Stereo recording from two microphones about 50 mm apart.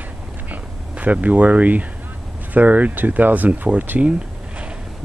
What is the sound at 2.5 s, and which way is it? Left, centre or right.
Speech, right.